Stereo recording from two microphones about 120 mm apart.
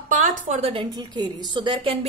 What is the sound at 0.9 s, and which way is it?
A woman's voice, 35° right (ahead or behind).